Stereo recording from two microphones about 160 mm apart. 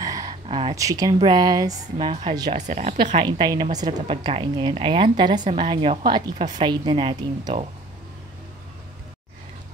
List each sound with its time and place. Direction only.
0.0 s a sound: 20° right (ahead or behind)
0.7 s a woman's voice: 20° right (ahead or behind)
2.5 s speech: 50° right (ahead or behind)
3.2 s a woman's voice: 30° right (ahead or behind)